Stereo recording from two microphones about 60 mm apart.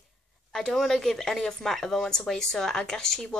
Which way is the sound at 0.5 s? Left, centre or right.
Centre.